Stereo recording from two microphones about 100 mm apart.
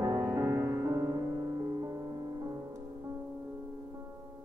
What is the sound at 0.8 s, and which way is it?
Music, 35° right (ahead or behind).